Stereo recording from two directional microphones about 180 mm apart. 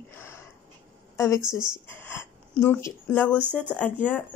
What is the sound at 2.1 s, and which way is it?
Speech, 10° left (ahead or behind).